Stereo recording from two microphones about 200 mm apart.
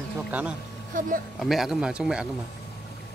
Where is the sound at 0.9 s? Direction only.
40° right (ahead or behind).